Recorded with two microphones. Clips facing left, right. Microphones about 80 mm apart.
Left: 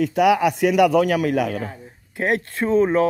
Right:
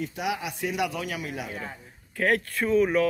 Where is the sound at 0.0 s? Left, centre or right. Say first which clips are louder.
Left 14 dB; left.